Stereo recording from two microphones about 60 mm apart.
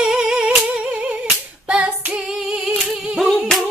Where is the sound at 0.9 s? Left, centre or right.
Right.